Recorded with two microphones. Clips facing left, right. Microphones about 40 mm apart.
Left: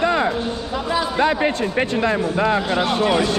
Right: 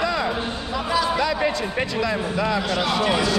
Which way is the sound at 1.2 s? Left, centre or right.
Left.